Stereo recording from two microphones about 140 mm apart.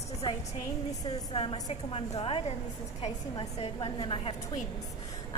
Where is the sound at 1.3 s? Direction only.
40° left (ahead or behind).